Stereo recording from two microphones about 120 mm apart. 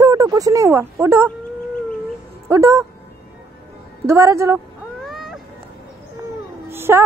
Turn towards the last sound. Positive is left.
turn(degrees=-20)  # may be behind; listen again after turning